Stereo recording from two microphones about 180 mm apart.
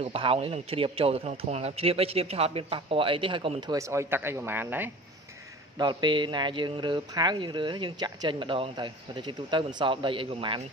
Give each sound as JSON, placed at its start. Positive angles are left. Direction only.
{"t": 0.0, "sound": "a man's voice", "side_deg": -30}
{"t": 5.8, "sound": "speech", "side_deg": -25}